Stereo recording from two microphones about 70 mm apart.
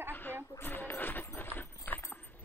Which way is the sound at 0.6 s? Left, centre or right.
Left.